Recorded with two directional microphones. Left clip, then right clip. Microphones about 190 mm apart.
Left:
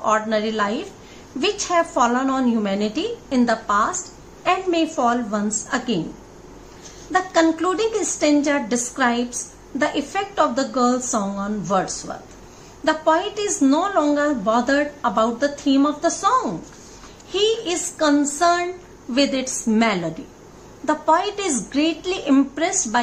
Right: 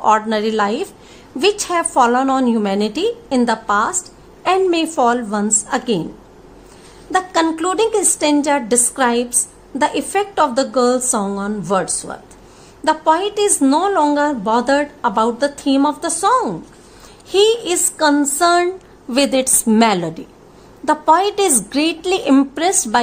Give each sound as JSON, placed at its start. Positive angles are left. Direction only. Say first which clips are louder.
{"t": 0.0, "sound": "a woman's voice", "louder": "right 5 dB", "side_deg": -55}
{"t": 7.1, "sound": "a woman's voice", "louder": "right 2 dB", "side_deg": -55}